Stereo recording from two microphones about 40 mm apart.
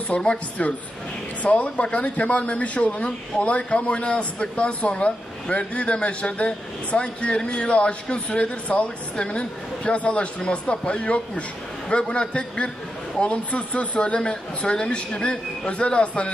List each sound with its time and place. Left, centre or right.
0.1 s speech: left
1.4 s speech: left